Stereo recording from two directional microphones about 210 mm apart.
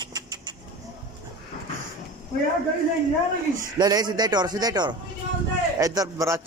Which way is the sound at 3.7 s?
20° right (ahead or behind).